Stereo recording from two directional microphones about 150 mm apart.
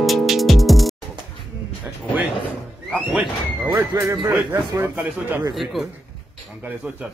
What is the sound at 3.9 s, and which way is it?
Music, 20° right (ahead or behind).